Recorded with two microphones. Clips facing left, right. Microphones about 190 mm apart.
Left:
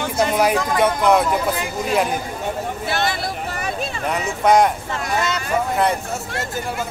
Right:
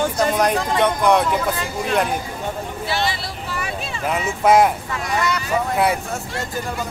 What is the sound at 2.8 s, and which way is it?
Vehicle, 50° left (ahead or behind).